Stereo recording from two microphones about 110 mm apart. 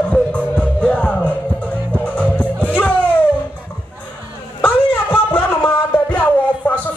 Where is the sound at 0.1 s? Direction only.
10° left (ahead or behind).